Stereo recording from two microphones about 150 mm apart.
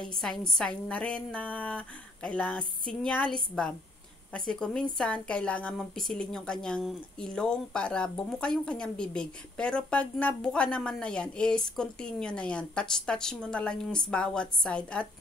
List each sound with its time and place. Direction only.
0.1 s a woman's voice: 5° left (ahead or behind)